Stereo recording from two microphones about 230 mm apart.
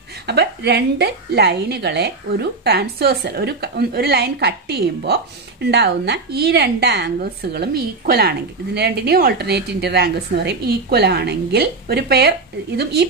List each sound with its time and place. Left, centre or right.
0.3 s a woman's voice: right